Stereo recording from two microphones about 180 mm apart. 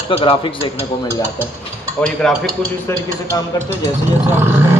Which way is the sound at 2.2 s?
5° left (ahead or behind).